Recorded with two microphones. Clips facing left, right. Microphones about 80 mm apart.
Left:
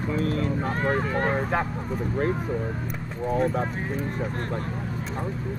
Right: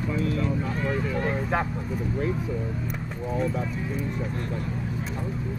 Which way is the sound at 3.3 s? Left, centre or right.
Left.